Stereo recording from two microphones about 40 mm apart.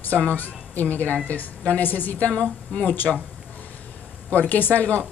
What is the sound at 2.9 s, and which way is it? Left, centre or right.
Speech, left.